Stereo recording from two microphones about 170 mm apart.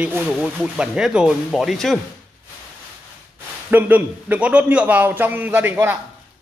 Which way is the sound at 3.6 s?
10° right (ahead or behind).